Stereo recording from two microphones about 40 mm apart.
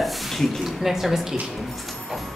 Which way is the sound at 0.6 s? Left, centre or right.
Centre.